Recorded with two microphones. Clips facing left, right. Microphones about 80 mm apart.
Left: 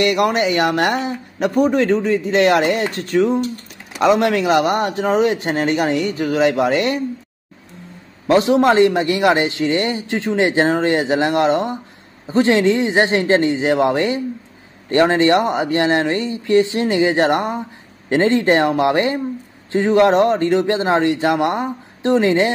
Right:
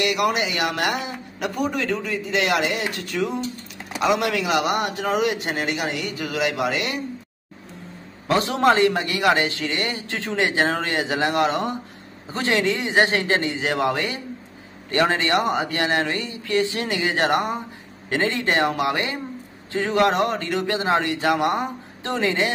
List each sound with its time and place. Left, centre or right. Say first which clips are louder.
0.0 s a man's voice: left 6 dB; left
8.3 s a man's voice: left 5 dB; left